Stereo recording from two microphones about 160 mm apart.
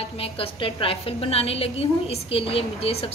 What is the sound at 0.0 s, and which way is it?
A woman's voice, 35° left (ahead or behind).